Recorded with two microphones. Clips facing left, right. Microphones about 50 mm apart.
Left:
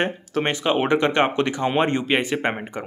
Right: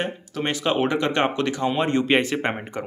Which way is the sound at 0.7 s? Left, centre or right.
Left.